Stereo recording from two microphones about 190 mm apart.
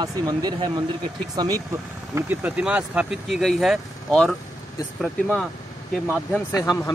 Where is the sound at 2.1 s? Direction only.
10° right (ahead or behind); by 6.6 s 10° left (ahead or behind).